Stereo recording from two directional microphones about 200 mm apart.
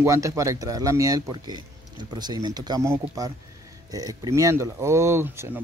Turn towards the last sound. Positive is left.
turn(degrees=-10)  # may be behind; listen again after turning